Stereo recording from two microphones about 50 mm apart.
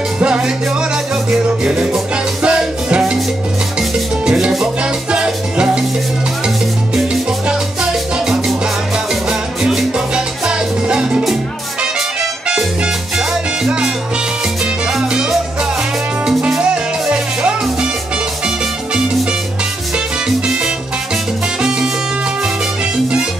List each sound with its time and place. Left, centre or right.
0.2 s music: centre
4.3 s salsa music: centre
5.1 s music: centre
7.8 s music: centre
13.3 s salsa music: centre
14.9 s music: centre
16.3 s music: centre